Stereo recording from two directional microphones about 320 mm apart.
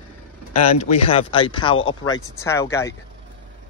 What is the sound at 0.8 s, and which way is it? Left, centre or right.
Speech, centre.